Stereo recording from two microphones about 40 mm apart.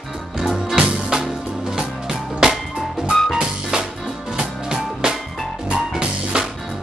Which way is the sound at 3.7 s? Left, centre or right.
Centre.